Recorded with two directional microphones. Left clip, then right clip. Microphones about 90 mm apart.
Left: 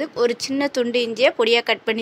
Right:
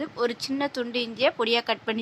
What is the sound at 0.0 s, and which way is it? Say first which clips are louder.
Speech: left 7 dB; 20° left (ahead or behind).